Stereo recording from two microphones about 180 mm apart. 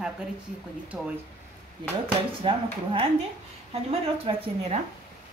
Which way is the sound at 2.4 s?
30° right (ahead or behind).